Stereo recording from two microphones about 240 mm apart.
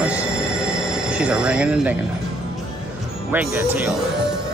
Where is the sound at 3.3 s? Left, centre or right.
Centre.